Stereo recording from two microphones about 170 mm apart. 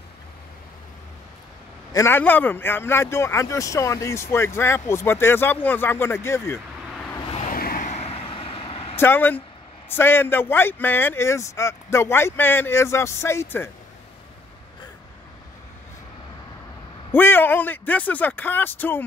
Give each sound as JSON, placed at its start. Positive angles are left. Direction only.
{"t": 1.9, "sound": "a man's voice", "side_deg": 15}
{"t": 7.5, "sound": "vehicle", "side_deg": 60}
{"t": 8.9, "sound": "a man's voice", "side_deg": 10}
{"t": 17.1, "sound": "a man's voice", "side_deg": 10}